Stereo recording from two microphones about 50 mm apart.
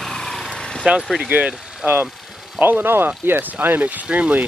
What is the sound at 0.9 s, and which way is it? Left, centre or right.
Speech, centre.